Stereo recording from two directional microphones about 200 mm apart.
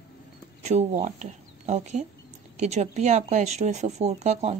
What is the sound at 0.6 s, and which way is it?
Speech, 35° right (ahead or behind).